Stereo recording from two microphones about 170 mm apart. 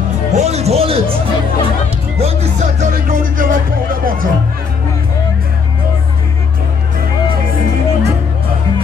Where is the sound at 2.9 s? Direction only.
50° right (ahead or behind).